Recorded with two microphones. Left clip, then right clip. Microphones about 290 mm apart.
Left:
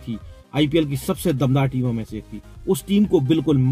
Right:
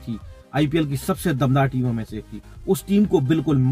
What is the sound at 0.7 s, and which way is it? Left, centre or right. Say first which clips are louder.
Speech: left 2 dB; centre.